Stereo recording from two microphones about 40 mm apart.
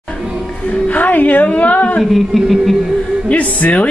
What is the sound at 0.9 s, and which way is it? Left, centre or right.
A woman's voice, left.